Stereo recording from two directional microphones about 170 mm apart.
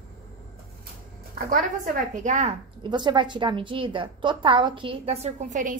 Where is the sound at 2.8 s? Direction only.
25° right (ahead or behind).